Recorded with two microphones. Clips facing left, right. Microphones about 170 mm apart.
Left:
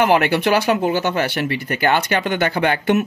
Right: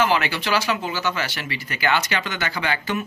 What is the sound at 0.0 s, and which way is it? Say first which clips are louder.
Speech: left 6 dB; 60° left (ahead or behind).